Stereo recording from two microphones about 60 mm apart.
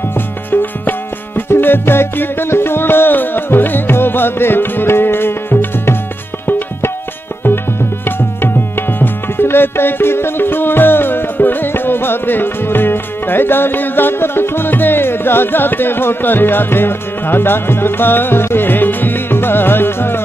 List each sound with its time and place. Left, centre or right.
0.5 s music: left
7.4 s tabla: left